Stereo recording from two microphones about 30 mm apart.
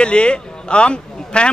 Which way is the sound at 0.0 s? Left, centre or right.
Left.